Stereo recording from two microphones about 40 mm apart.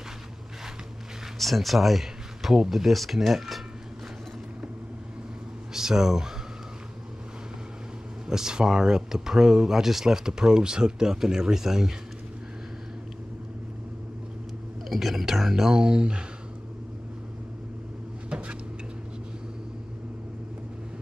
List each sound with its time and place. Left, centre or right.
1.4 s speech: centre
5.7 s speech: centre
8.3 s speech: centre
14.9 s speech: centre; by 16.3 s right
18.3 s a sound: right